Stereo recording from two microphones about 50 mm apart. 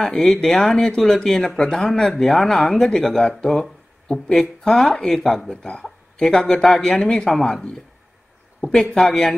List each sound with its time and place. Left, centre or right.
0.0 s speech: centre
5.5 s speech: centre
8.7 s speech: centre